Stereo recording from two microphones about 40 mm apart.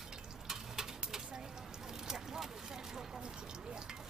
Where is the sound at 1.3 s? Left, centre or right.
Centre.